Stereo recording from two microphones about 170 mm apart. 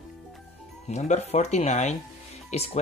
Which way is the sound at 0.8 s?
40° left (ahead or behind).